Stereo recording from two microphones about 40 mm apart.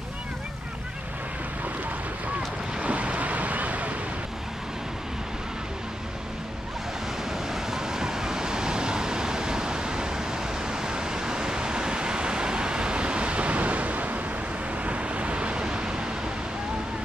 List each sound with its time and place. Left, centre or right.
2.8 s waves: right
7.7 s vehicle: centre